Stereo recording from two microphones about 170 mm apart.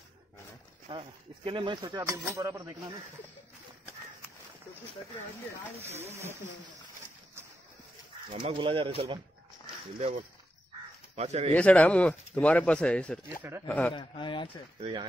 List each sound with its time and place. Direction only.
0.8 s speech: 30° right (ahead or behind)
8.3 s speech: 30° right (ahead or behind)
9.9 s speech: 40° right (ahead or behind)
11.5 s speech: 5° left (ahead or behind)
13.9 s speech: 30° left (ahead or behind)
14.8 s speech: 25° right (ahead or behind)